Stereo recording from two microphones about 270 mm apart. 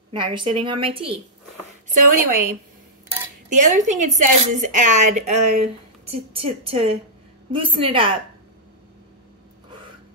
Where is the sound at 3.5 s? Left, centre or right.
Right.